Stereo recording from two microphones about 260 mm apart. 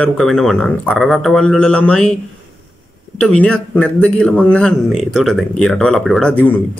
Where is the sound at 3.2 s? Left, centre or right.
Centre.